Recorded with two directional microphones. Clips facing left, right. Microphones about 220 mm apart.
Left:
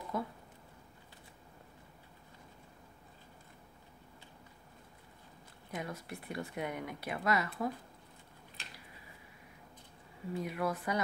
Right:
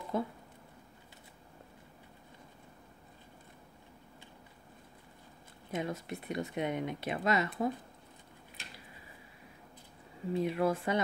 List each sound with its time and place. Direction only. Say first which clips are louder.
0.1 s speech: right 4 dB; 25° right (ahead or behind)
5.7 s speech: right 5 dB; 25° right (ahead or behind)
10.3 s speech: right 5 dB; 25° right (ahead or behind)